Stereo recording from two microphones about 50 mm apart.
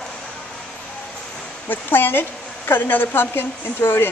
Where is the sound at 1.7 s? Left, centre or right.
Left.